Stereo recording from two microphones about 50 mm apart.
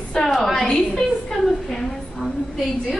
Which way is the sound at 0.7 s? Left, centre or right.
Centre.